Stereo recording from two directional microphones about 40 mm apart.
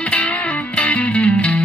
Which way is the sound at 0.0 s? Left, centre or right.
Left.